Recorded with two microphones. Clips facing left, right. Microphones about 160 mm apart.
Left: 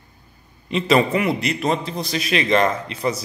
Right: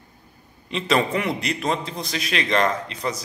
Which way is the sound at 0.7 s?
5° left (ahead or behind).